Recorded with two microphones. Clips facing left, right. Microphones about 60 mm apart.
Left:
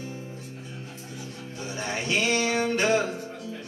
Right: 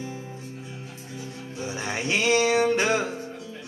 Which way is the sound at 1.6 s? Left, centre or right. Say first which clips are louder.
Right 2 dB; right.